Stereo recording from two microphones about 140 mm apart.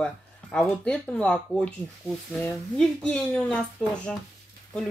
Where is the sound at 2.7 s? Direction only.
5° left (ahead or behind).